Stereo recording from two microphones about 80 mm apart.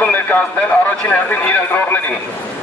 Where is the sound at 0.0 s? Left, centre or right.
Left.